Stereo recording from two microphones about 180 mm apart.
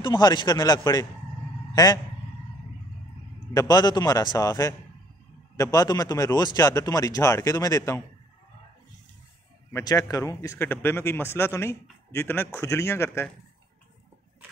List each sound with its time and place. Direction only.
0.0 s speech: 25° left (ahead or behind)
1.8 s speech: 20° left (ahead or behind)
3.5 s speech: 20° left (ahead or behind)
9.7 s a man's voice: 15° left (ahead or behind)